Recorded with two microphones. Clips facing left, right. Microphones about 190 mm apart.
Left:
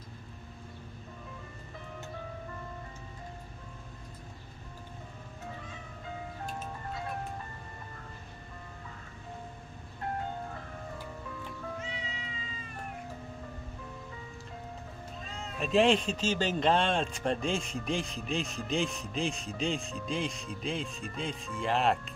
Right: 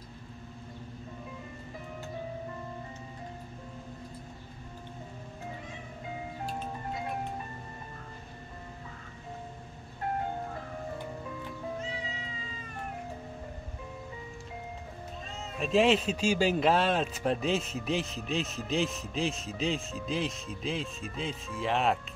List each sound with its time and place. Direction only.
11.8 s cat: 40° right (ahead or behind)
15.2 s speech: centre (ahead or behind)